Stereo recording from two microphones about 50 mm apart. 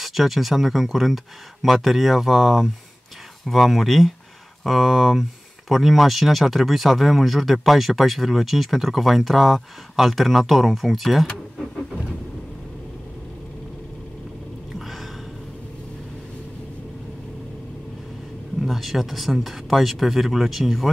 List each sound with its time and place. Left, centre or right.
0.0 s speech: centre
14.8 s gasp: centre
18.6 s speech: centre